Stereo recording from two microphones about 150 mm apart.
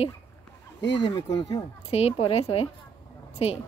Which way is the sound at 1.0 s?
30° left (ahead or behind).